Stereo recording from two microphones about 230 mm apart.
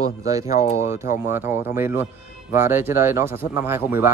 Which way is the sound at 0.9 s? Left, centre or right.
Centre.